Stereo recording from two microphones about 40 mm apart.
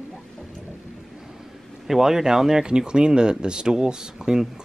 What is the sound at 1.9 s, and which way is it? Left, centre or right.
A man's voice, centre.